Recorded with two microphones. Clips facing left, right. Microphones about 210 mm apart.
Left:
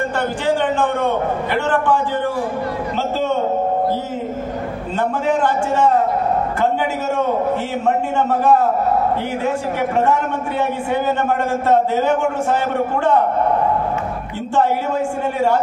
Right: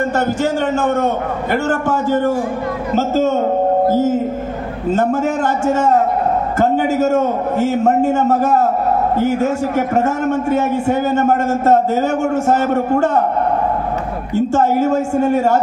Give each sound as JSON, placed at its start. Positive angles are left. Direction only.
{"t": 0.4, "sound": "a man's voice", "side_deg": -45}
{"t": 14.3, "sound": "a man's voice", "side_deg": -45}